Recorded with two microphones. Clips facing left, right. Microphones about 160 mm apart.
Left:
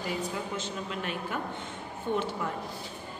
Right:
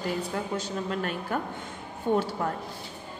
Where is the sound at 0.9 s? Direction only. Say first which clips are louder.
Right 4 dB; 45° right (ahead or behind).